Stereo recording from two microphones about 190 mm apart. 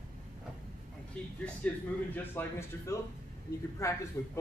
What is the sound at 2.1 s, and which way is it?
Speech, 10° left (ahead or behind).